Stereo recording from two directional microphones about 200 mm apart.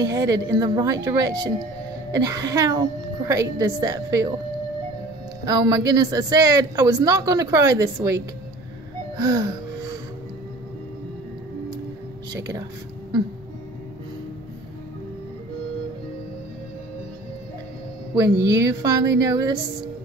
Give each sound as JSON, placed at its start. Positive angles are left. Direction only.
{"t": 0.1, "sound": "a man's voice", "side_deg": -15}
{"t": 5.4, "sound": "a man's voice", "side_deg": -20}
{"t": 9.1, "sound": "a sound", "side_deg": -20}
{"t": 12.3, "sound": "a man's voice", "side_deg": -15}
{"t": 18.1, "sound": "a man's voice", "side_deg": -15}